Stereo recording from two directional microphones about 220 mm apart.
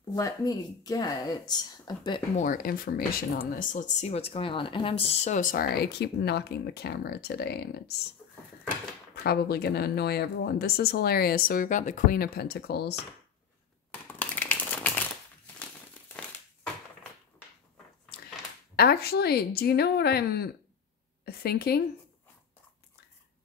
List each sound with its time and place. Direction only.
0.1 s speech: 15° left (ahead or behind)
2.3 s speech: 35° left (ahead or behind)
9.1 s speech: 45° left (ahead or behind)
14.1 s a sound: 5° left (ahead or behind)
18.8 s speech: 45° left (ahead or behind)